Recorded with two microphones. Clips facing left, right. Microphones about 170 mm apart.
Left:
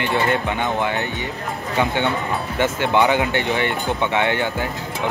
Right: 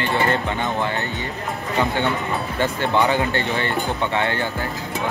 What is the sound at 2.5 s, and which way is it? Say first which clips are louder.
Speech: left 2 dB; 20° left (ahead or behind).